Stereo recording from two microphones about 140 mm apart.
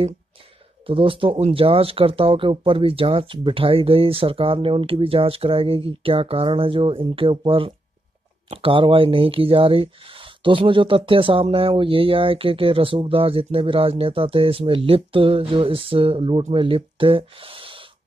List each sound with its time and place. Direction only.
0.8 s speech: 40° right (ahead or behind)